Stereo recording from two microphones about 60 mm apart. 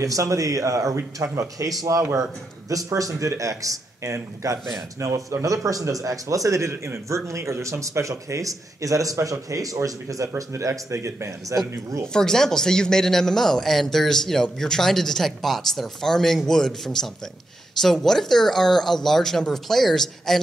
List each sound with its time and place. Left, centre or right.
0.0 s speech: right
1.8 s speech: right
4.1 s speech: right
12.1 s a man's voice: centre